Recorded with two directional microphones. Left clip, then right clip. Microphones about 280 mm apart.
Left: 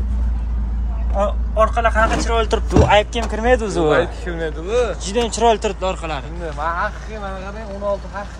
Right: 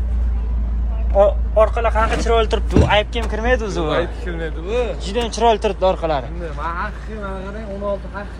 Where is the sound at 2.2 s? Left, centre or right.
Centre; by 5.0 s left.